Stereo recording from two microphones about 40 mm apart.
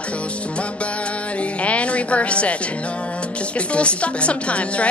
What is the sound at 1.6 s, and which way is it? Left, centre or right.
Speech, left.